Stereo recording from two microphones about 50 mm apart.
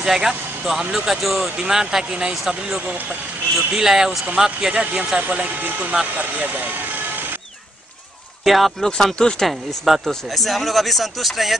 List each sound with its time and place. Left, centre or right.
0.0 s speech: centre
2.8 s speech: right
3.5 s speech: centre
5.2 s speech: right
6.1 s vehicle: right
8.5 s speech: centre